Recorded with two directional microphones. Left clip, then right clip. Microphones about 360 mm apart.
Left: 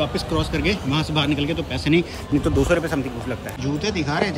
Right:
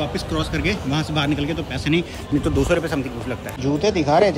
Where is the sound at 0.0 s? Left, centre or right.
Centre.